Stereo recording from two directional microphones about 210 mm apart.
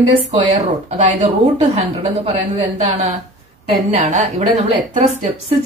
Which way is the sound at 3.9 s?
35° right (ahead or behind).